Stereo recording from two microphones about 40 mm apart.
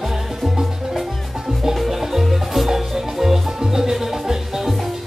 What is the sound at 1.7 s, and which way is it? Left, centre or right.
Music, centre.